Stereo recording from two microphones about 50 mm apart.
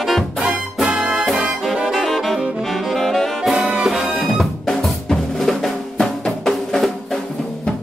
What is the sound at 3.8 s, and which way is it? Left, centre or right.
Drum kit, centre.